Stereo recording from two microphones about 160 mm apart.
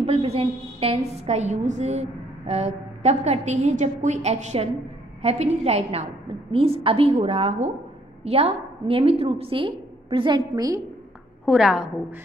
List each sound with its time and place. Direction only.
0.0 s a woman's voice: 40° right (ahead or behind); by 10.8 s 25° right (ahead or behind)
11.4 s a woman's voice: centre (ahead or behind)